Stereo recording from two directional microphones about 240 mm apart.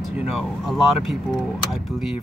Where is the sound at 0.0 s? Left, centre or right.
Centre.